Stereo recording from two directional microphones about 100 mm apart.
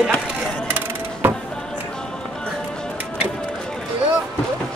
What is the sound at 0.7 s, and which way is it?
Mechanisms, 20° right (ahead or behind).